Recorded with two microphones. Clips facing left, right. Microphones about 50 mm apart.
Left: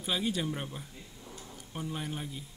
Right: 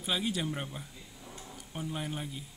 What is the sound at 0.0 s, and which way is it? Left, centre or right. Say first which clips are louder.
Speech: left 1 dB; centre.